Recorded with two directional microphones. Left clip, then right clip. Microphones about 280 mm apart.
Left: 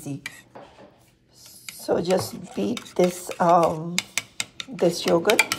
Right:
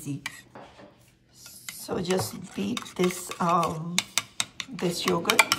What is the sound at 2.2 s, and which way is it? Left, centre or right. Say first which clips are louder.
Speech: left 4 dB; centre.